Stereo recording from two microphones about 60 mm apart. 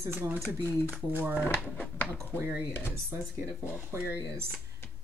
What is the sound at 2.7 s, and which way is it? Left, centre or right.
Speech, left.